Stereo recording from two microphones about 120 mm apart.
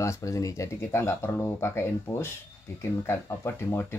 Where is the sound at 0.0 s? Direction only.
25° left (ahead or behind).